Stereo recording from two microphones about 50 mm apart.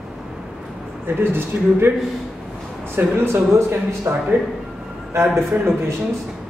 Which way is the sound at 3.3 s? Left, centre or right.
Right.